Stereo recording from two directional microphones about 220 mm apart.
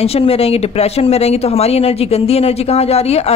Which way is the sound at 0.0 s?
25° left (ahead or behind).